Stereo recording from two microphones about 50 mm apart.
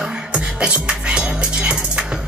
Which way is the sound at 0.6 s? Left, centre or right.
Centre.